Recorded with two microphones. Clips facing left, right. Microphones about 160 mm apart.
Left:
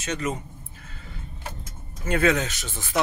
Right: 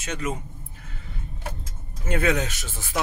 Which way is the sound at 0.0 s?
10° right (ahead or behind).